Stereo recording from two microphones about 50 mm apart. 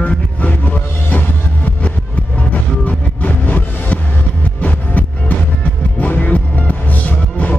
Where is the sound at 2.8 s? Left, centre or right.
Left.